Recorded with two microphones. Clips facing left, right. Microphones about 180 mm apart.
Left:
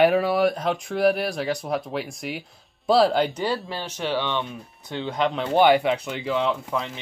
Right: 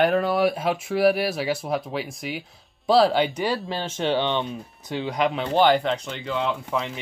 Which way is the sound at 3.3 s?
15° right (ahead or behind).